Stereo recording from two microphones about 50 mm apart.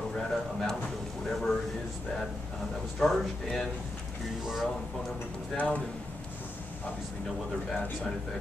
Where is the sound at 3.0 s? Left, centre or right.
Centre.